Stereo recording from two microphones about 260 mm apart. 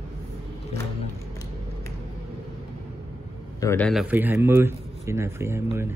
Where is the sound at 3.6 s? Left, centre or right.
Centre.